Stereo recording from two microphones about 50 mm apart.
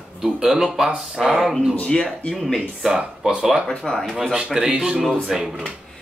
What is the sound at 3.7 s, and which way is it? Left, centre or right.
Speech, centre.